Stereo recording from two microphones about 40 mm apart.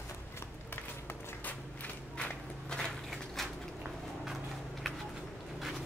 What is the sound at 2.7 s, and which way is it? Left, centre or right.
Walk, left.